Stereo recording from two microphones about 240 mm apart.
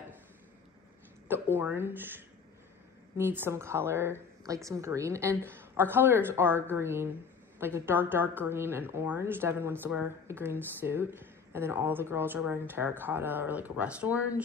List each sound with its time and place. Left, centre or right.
1.3 s a woman's voice: centre
3.2 s a woman's voice: centre